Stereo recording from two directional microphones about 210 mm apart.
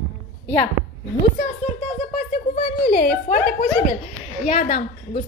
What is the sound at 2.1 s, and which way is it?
Speech, 35° left (ahead or behind).